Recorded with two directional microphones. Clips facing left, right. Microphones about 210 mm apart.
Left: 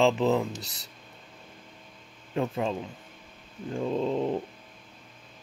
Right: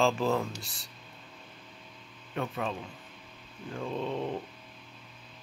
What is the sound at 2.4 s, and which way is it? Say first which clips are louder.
Speech: left 5 dB; 25° left (ahead or behind).